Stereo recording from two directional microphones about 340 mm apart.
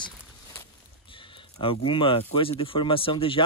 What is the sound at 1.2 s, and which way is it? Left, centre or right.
Speech, centre.